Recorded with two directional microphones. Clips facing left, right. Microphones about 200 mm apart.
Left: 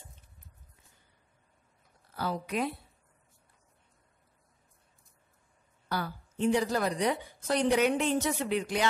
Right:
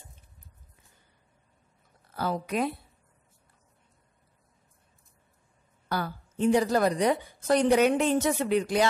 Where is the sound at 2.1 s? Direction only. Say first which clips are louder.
Right 3 dB; 45° right (ahead or behind).